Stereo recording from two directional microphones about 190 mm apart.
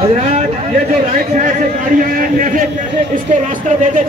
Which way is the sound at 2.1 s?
45° right (ahead or behind).